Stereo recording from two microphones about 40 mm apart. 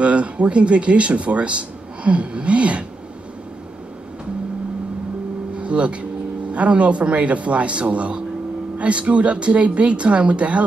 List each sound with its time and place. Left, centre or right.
0.0 s speech: right
5.6 s speech: right